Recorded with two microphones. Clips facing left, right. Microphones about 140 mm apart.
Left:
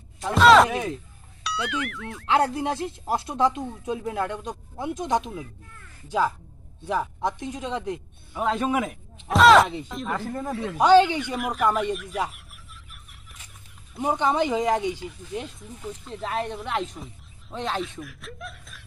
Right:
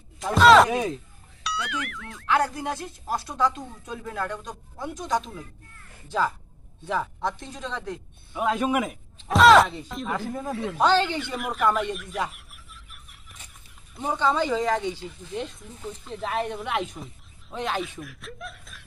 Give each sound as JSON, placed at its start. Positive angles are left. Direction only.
{"t": 0.3, "sound": "speech", "side_deg": 0}
{"t": 0.7, "sound": "speech", "side_deg": -20}
{"t": 1.4, "sound": "speech", "side_deg": 0}
{"t": 2.2, "sound": "speech", "side_deg": 25}
{"t": 8.4, "sound": "speech", "side_deg": -10}
{"t": 10.8, "sound": "speech", "side_deg": 10}
{"t": 11.3, "sound": "a sound", "side_deg": 0}
{"t": 14.0, "sound": "speech", "side_deg": 20}